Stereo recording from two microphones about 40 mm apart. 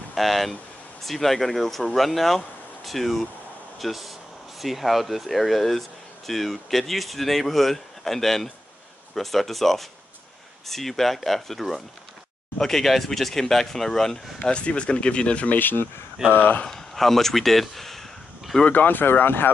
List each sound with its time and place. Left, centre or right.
0.1 s speech: centre
14.5 s speech: left
15.5 s speech: left
16.6 s speech: centre
18.7 s speech: left